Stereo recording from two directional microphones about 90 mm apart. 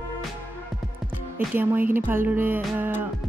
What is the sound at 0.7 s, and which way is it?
Music, centre (ahead or behind).